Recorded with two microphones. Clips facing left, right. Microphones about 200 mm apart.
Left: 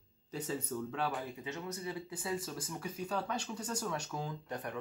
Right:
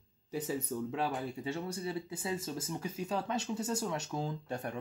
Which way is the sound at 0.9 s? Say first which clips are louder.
Right 3 dB; 25° right (ahead or behind).